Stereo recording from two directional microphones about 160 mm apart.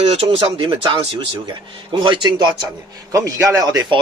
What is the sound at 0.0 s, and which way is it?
A man's voice, 40° right (ahead or behind).